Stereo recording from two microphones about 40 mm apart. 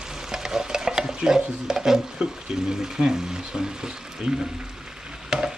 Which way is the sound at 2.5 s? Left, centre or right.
Centre.